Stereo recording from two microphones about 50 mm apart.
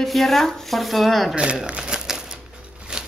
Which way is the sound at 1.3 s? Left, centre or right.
Right.